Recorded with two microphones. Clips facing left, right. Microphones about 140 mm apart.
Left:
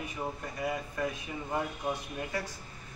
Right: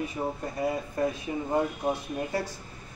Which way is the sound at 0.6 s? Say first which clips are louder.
Right 5 dB; 35° right (ahead or behind).